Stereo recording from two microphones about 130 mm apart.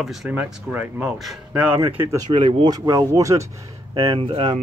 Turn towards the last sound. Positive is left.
turn(degrees=-40)  # may be behind; listen again after turning